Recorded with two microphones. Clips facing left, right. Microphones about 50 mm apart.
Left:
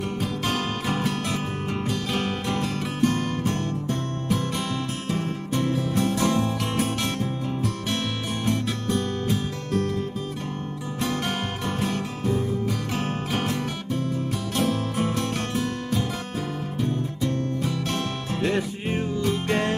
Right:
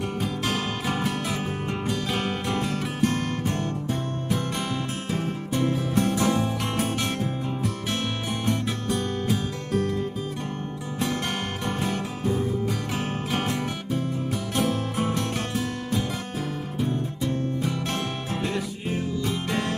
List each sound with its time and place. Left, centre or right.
0.2 s music: centre
5.1 s music: centre
8.5 s music: centre
11.6 s music: centre
15.5 s music: centre
18.5 s music: left
19.2 s music: centre